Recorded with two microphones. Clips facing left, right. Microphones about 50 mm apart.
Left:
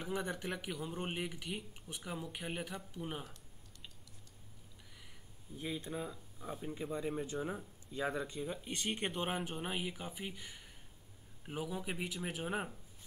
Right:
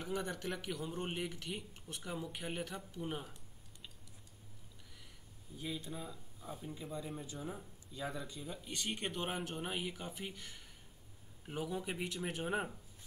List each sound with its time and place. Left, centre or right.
0.0 s speech: centre
5.6 s speech: left; by 12.7 s centre